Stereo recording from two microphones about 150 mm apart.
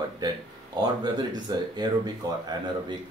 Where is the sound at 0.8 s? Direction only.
30° right (ahead or behind).